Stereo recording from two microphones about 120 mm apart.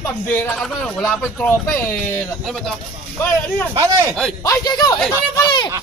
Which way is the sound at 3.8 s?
30° right (ahead or behind).